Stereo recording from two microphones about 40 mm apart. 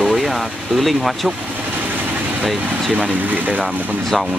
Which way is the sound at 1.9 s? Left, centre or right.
Right.